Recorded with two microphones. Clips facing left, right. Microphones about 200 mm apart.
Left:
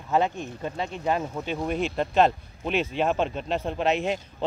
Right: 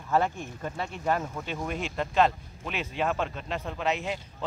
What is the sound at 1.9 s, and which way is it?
Speech, 25° left (ahead or behind).